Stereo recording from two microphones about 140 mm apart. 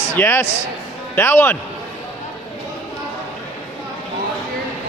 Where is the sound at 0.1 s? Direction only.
15° left (ahead or behind).